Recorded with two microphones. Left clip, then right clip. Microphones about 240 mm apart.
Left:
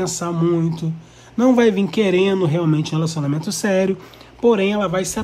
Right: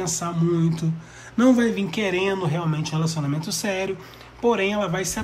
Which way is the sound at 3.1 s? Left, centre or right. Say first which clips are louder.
Left 4 dB; centre.